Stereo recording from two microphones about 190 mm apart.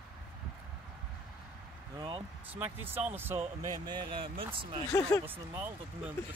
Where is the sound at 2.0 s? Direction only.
30° right (ahead or behind).